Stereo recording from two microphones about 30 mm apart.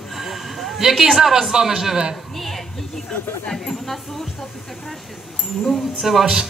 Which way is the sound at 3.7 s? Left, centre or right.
Centre.